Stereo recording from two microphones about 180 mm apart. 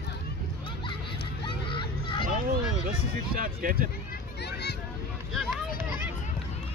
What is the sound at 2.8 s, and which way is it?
Speech, 55° right (ahead or behind).